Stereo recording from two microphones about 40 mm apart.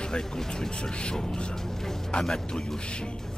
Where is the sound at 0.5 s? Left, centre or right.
Left.